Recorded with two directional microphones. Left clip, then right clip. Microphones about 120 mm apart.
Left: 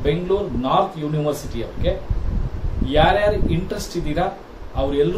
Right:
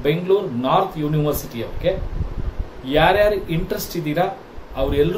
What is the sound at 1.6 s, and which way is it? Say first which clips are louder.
Speech: even; 30° right (ahead or behind).